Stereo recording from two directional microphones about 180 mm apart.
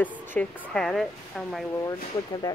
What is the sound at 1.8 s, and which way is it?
Speech, 20° left (ahead or behind).